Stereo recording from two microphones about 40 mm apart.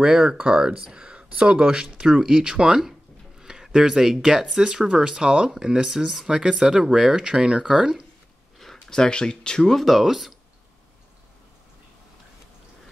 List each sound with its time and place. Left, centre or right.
0.0 s speech: centre
2.8 s speech: centre
5.9 s speech: centre
8.8 s speech: centre
9.8 s speech: centre